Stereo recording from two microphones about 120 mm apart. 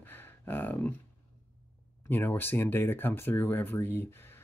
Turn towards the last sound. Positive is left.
turn(degrees=15)  # may be behind; listen again after turning